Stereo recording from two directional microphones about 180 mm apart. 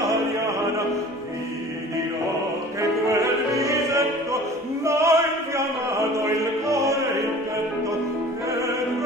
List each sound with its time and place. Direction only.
3.1 s opera: 15° right (ahead or behind)
4.8 s chant: 15° right (ahead or behind)
6.7 s music: 15° right (ahead or behind)